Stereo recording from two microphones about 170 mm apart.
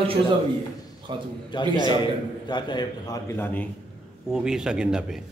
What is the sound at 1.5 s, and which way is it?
A man's voice, 25° left (ahead or behind).